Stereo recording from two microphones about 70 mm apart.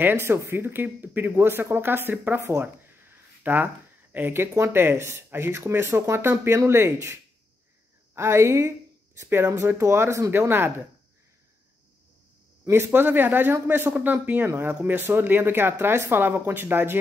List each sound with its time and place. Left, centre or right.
0.0 s speech: right
12.6 s speech: right